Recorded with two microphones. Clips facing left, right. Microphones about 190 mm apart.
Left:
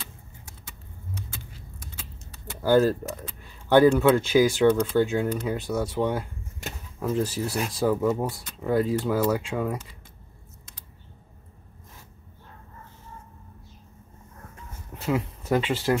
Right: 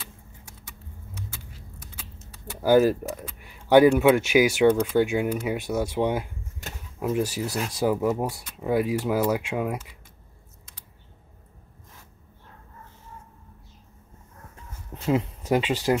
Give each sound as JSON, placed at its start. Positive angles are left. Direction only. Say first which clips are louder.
{"t": 1.8, "sound": "speech", "louder": "left 1 dB", "side_deg": -10}
{"t": 15.0, "sound": "speech", "louder": "right 2 dB", "side_deg": -20}